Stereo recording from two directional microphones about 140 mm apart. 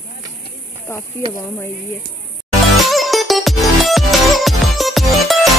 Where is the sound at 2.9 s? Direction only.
Centre (ahead or behind).